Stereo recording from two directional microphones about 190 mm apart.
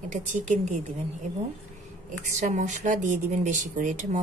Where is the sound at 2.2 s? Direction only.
40° right (ahead or behind).